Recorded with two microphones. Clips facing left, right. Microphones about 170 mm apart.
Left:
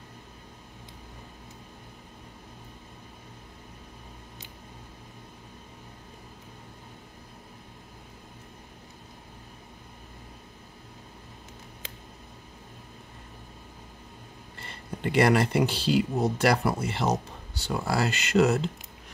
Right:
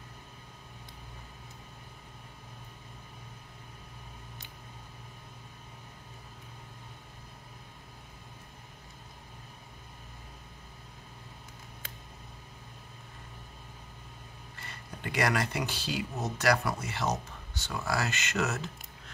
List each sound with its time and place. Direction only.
14.6 s speech: 30° left (ahead or behind)